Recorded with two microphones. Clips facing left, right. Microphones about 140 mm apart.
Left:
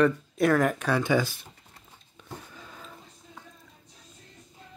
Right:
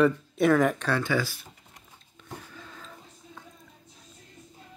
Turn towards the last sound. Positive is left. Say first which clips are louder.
# right 1 dB
turn(degrees=10)  # may be behind; listen again after turning